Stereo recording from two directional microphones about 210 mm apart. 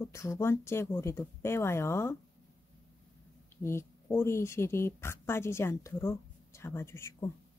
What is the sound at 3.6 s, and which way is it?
Speech, 10° left (ahead or behind).